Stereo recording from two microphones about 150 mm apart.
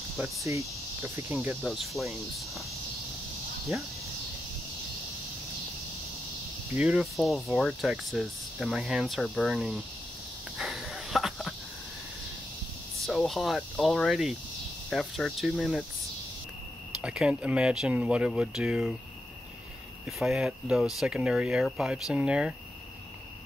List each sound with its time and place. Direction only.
0.2 s cricket: 20° right (ahead or behind)
1.7 s speech: centre (ahead or behind)
6.8 s speech: centre (ahead or behind)
10.6 s a sound: 5° right (ahead or behind)
13.0 s speech: centre (ahead or behind)
17.0 s speech: 5° right (ahead or behind)
20.1 s speech: centre (ahead or behind)